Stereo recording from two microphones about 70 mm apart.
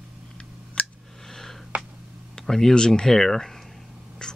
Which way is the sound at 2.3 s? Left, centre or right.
Centre.